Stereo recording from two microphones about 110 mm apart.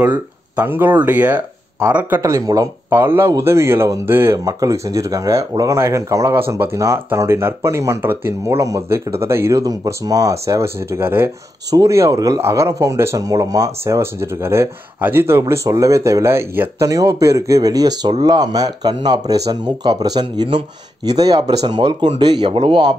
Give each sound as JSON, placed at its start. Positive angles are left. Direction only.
{"t": 0.0, "sound": "speech", "side_deg": -15}
{"t": 2.2, "sound": "speech", "side_deg": -30}